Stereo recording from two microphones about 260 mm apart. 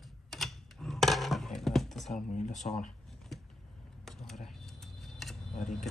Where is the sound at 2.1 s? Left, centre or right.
Left.